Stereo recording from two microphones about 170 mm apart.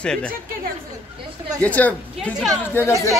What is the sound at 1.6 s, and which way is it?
A man's voice, 10° left (ahead or behind).